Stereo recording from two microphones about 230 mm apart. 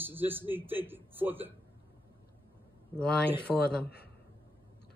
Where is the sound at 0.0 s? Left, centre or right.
Centre.